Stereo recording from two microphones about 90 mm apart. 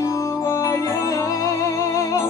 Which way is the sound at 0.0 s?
40° left (ahead or behind).